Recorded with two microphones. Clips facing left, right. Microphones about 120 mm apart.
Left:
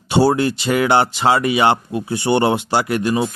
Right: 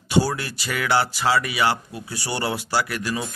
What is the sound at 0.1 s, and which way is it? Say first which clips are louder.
A man's voice: left 7 dB; 25° left (ahead or behind).